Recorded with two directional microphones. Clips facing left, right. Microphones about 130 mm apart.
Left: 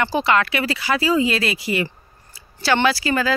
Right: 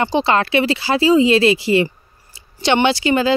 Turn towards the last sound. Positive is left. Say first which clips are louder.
# right 4 dB
turn(degrees=-25)  # may be behind; listen again after turning